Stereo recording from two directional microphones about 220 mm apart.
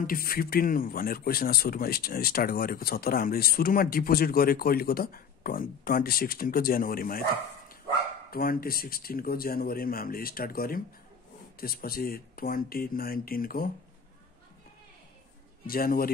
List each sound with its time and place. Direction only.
0.0 s a man's voice: 40° left (ahead or behind)
8.3 s speech: 40° left (ahead or behind)
15.6 s speech: 40° left (ahead or behind)